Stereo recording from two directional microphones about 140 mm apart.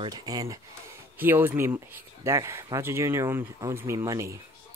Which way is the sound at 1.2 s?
15° right (ahead or behind).